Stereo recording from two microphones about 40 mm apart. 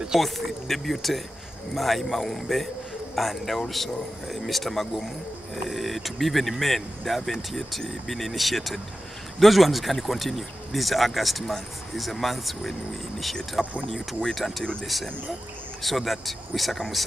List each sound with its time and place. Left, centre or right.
0.2 s speech: centre
14.6 s speech: left
15.8 s speech: centre